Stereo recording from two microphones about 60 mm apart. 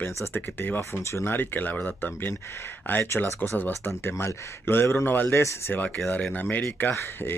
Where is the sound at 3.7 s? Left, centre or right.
Left.